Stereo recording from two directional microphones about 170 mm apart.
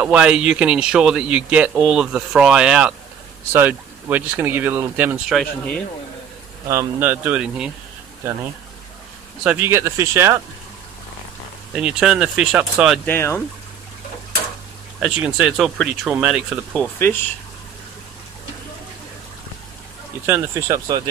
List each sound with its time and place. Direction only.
0.0 s a man's voice: 5° right (ahead or behind)
5.3 s a man's voice: centre (ahead or behind)
6.7 s speech: 15° right (ahead or behind)
9.4 s speech: 10° right (ahead or behind)
11.7 s a man's voice: 5° right (ahead or behind)
13.0 s speech: 15° left (ahead or behind)
15.0 s a man's voice: 5° right (ahead or behind)
16.7 s speech: 10° left (ahead or behind)
20.2 s speech: 15° right (ahead or behind)